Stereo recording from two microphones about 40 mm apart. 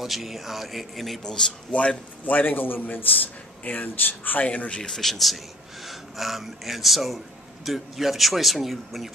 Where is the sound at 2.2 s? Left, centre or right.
Left.